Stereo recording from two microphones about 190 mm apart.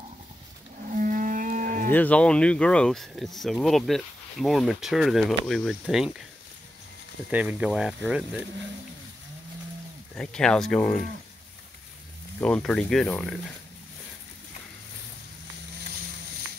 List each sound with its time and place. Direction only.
0.8 s livestock: 45° right (ahead or behind)
1.9 s speech: 10° left (ahead or behind)
7.2 s speech: 5° right (ahead or behind)
10.1 s speech: 5° left (ahead or behind)
12.4 s speech: 5° left (ahead or behind)